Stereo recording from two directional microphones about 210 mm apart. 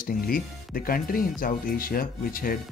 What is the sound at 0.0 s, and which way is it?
Speech, 45° left (ahead or behind).